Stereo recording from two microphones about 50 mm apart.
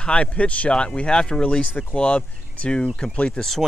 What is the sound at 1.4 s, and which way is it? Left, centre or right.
Speech, left.